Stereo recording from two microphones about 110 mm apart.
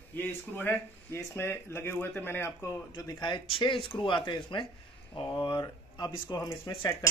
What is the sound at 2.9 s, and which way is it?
Speech, 40° left (ahead or behind).